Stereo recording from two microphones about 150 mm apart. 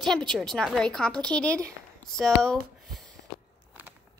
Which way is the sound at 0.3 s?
5° left (ahead or behind).